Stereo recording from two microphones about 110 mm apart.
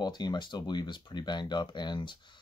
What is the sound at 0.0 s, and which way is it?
Speech, 40° left (ahead or behind).